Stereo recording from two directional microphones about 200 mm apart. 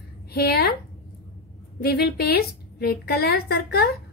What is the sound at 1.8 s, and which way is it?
A woman's voice, 50° left (ahead or behind).